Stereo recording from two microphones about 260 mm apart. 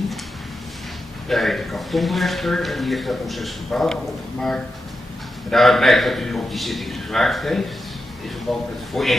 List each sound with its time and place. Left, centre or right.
1.3 s speech: centre